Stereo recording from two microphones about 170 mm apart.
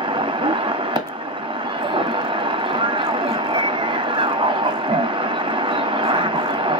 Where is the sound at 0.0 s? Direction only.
30° right (ahead or behind).